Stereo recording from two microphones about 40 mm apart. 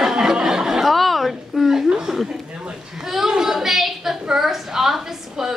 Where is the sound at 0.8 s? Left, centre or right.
Centre.